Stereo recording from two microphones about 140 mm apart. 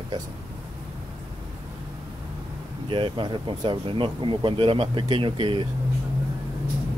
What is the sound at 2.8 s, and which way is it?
Speech, 35° right (ahead or behind).